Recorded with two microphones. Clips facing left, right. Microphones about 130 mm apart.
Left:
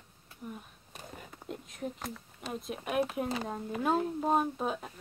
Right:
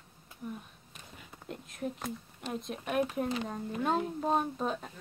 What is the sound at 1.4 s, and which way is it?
Speech, centre (ahead or behind).